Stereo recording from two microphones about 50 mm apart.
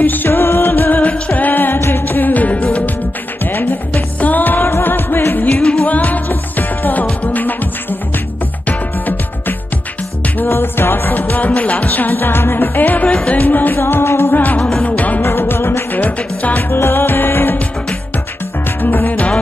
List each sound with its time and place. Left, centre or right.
0.0 s music: left
5.6 s music: centre
5.9 s music: left
8.6 s music: left
10.4 s music: left
13.1 s music: left
13.4 s music: left
13.7 s music: left
14.3 s music: left
15.2 s music: left
16.0 s music: left
16.7 s music: left
18.8 s music: left